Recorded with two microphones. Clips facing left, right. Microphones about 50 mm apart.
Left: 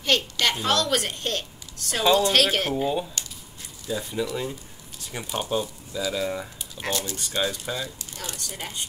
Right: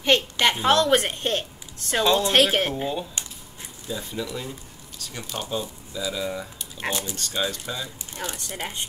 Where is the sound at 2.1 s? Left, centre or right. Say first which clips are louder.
Right 1 dB; centre.